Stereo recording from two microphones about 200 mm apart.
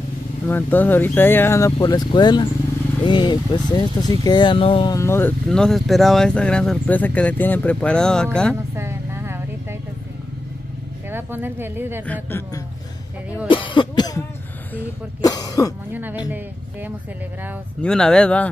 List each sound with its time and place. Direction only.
0.5 s speech: 10° left (ahead or behind)
8.7 s vehicle: 15° right (ahead or behind)
11.1 s speech: 10° right (ahead or behind)
12.1 s speech: 10° left (ahead or behind)
13.5 s speech: 25° left (ahead or behind)
15.2 s speech: 20° left (ahead or behind)
15.9 s speech: 10° right (ahead or behind)
17.8 s speech: 5° left (ahead or behind)